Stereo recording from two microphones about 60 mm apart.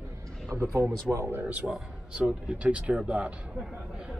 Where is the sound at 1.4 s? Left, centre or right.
Right.